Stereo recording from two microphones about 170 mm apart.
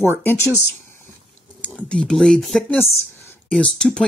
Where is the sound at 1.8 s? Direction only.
5° left (ahead or behind).